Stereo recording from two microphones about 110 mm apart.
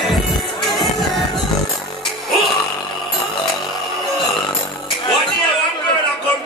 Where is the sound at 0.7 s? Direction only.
Centre (ahead or behind).